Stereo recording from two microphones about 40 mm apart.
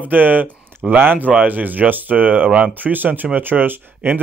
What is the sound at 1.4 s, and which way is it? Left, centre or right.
Speech, right.